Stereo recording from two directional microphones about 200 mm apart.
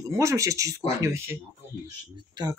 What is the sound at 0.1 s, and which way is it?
Speech, 15° right (ahead or behind).